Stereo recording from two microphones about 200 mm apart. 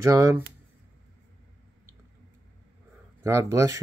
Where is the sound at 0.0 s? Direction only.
15° right (ahead or behind).